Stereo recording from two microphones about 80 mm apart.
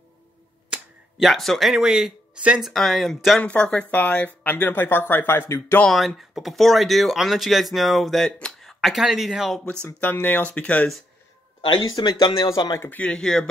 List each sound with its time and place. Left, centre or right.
1.2 s speech: centre
3.4 s speech: centre
5.9 s speech: centre
9.9 s speech: left
11.6 s speech: left
12.4 s a man's voice: left
12.8 s speech: centre
13.1 s speech: centre